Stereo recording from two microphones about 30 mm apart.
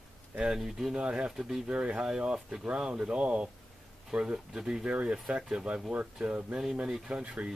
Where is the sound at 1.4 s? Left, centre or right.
Centre.